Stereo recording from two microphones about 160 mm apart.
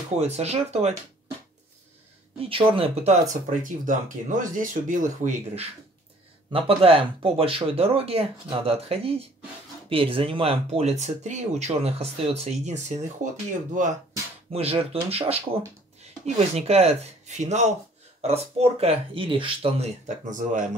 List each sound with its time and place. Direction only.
0.2 s speech: 45° right (ahead or behind)
2.4 s speech: 35° right (ahead or behind); by 5.7 s 50° right (ahead or behind)
6.5 s speech: 35° right (ahead or behind); by 13.9 s 50° right (ahead or behind)
14.5 s speech: 40° right (ahead or behind)
20.2 s speech: 55° right (ahead or behind)